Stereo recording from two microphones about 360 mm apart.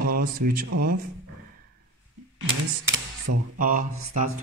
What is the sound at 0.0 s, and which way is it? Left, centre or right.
Speech, right.